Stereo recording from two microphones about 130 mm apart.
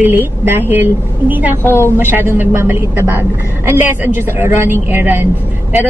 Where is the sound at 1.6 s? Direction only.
15° left (ahead or behind).